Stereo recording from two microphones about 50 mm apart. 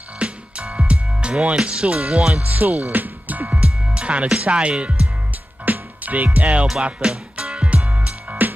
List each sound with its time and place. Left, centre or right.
0.2 s music: right
1.4 s speech: centre
2.4 s speech: right
3.5 s music: right
4.4 s speech: right
5.7 s music: right